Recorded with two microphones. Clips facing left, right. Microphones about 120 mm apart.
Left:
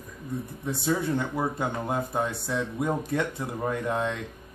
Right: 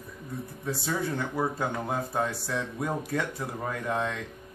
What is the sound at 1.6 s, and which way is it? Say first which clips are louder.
Speech: left 2 dB; 20° left (ahead or behind).